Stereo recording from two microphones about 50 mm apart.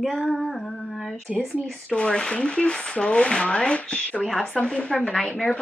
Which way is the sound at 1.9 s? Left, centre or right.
Centre.